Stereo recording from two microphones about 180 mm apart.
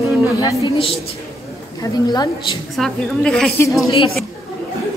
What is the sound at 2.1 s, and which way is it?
Speech, 25° left (ahead or behind).